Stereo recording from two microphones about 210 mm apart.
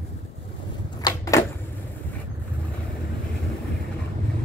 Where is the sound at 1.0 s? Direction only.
15° left (ahead or behind).